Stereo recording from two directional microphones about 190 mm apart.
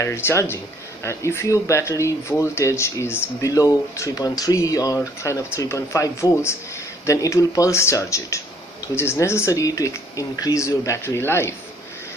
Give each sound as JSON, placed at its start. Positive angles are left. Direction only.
{"t": 0.0, "sound": "speech", "side_deg": 15}